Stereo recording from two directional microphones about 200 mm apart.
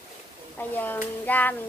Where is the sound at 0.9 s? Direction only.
10° left (ahead or behind).